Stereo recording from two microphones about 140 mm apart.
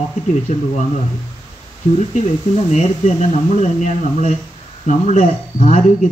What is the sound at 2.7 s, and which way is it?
Speech, 55° left (ahead or behind).